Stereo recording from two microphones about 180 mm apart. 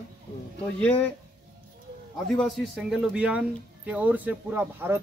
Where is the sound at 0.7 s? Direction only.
10° left (ahead or behind).